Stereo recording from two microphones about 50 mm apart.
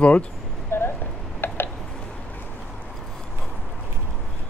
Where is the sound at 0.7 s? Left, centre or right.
Left.